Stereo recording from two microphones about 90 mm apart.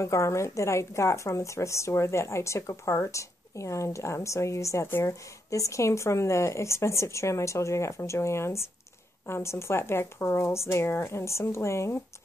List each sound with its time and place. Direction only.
0.0 s a woman's voice: 35° left (ahead or behind)
5.5 s a woman's voice: 35° left (ahead or behind)